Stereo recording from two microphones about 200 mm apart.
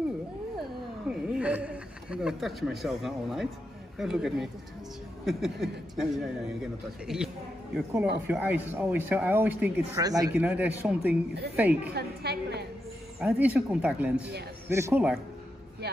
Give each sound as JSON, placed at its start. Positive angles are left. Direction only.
{"t": 0.6, "sound": "a sound", "side_deg": -5}
{"t": 4.0, "sound": "a man's voice", "side_deg": 0}
{"t": 8.3, "sound": "speech", "side_deg": -10}
{"t": 11.9, "sound": "a woman's voice", "side_deg": -55}
{"t": 13.2, "sound": "speech", "side_deg": -5}